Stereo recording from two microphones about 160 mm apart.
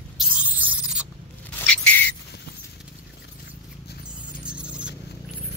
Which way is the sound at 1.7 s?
5° left (ahead or behind).